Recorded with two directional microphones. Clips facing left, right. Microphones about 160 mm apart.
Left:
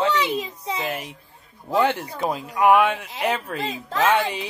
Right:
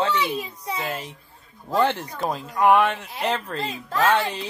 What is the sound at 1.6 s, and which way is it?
Speech, 10° left (ahead or behind).